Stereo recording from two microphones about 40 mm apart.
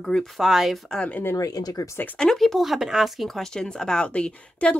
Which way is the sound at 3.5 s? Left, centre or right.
Centre.